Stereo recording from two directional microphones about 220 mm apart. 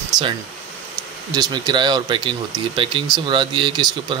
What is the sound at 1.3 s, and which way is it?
Speech, 20° right (ahead or behind).